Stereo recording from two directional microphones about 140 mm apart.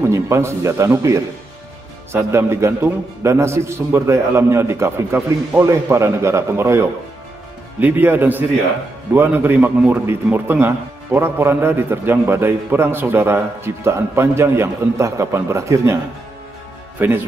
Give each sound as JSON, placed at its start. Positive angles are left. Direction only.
{"t": 0.0, "sound": "a man's voice", "side_deg": -20}
{"t": 17.0, "sound": "a man's voice", "side_deg": -15}